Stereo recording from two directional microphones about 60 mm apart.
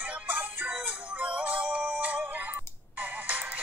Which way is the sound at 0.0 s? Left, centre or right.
Right.